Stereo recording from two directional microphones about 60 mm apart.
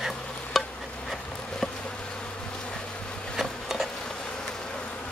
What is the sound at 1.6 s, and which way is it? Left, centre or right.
Bee, centre.